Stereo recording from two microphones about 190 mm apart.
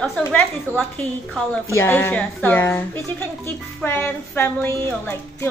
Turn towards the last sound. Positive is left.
turn(degrees=10)  # may be behind; listen again after turning